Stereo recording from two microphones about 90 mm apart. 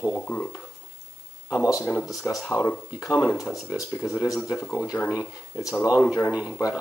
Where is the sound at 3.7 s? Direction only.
35° left (ahead or behind).